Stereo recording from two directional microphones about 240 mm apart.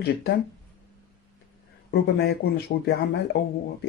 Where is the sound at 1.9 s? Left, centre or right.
Left.